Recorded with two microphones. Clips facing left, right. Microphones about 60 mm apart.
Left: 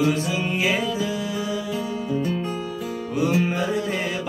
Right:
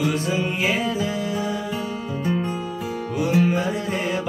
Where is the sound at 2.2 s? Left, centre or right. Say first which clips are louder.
Right 1 dB; right.